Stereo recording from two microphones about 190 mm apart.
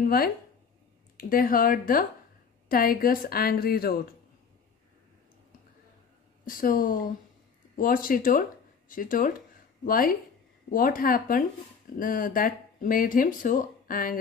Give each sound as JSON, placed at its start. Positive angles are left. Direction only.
{"t": 1.1, "sound": "speech", "side_deg": 50}
{"t": 6.4, "sound": "speech", "side_deg": 50}